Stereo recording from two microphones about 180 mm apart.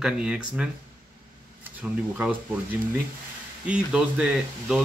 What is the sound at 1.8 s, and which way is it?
Speech, 10° right (ahead or behind).